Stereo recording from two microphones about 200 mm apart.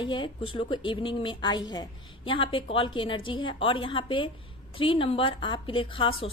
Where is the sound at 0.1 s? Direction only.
25° left (ahead or behind).